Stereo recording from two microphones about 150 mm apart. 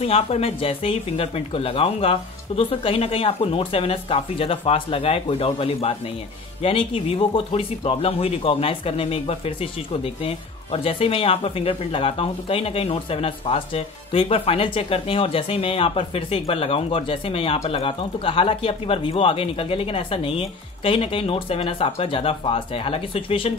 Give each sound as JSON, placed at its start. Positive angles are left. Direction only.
{"t": 0.0, "sound": "speech", "side_deg": 40}